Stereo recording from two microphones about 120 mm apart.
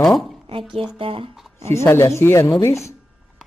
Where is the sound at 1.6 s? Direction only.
25° left (ahead or behind).